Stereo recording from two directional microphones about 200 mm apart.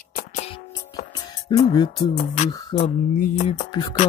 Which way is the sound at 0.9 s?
15° left (ahead or behind).